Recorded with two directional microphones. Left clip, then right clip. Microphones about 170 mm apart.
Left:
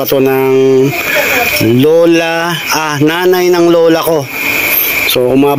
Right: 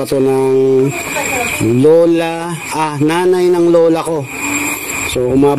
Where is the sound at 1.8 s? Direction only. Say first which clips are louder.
Even; centre (ahead or behind).